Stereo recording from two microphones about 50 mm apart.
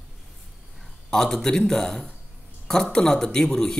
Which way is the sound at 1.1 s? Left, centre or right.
Centre.